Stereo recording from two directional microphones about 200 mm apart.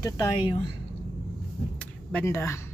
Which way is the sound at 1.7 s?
10° left (ahead or behind).